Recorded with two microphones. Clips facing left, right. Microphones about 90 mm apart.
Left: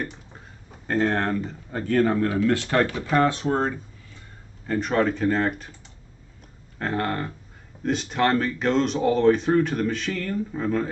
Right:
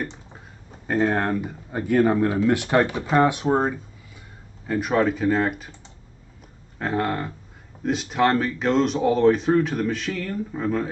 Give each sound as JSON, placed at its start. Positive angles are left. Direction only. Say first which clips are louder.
{"t": 0.8, "sound": "speech", "louder": "right 1 dB", "side_deg": -10}
{"t": 6.8, "sound": "speech", "louder": "right 2 dB", "side_deg": -5}